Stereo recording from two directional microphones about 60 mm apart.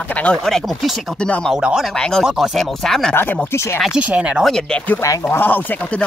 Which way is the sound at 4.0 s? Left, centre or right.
Right.